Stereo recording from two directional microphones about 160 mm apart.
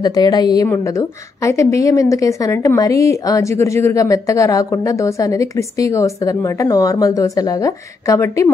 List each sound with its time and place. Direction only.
0.0 s a woman's voice: 25° left (ahead or behind)